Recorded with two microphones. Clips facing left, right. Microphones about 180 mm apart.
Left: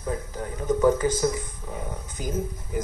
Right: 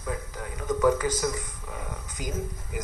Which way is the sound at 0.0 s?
30° left (ahead or behind).